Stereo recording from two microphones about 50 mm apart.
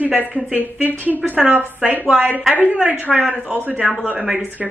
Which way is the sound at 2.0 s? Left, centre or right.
Right.